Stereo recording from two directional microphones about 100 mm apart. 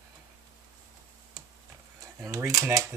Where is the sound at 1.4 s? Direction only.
35° right (ahead or behind).